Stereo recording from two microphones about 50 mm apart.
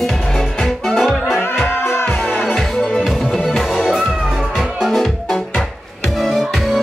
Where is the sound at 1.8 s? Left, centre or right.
Left.